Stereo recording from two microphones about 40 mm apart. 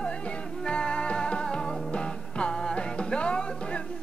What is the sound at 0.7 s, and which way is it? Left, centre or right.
Music, left.